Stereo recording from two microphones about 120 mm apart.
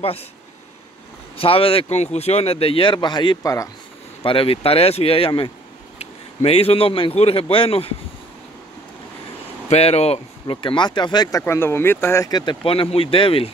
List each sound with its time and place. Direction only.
1.3 s a man's voice: 50° left (ahead or behind)
9.7 s speech: 60° left (ahead or behind)
10.4 s speech: 45° left (ahead or behind); by 12.3 s 20° left (ahead or behind)
12.3 s speech: 40° left (ahead or behind)